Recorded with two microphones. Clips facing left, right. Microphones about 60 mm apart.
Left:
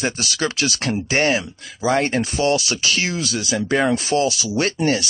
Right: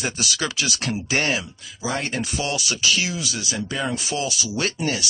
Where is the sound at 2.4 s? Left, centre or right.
Left.